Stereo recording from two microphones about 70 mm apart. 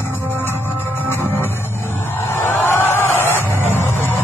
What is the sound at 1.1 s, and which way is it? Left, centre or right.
Music, left.